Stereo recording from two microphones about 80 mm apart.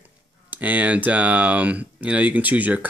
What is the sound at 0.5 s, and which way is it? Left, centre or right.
Speech, centre.